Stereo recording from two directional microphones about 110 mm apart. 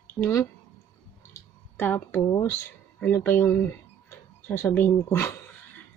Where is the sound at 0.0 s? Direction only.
25° left (ahead or behind).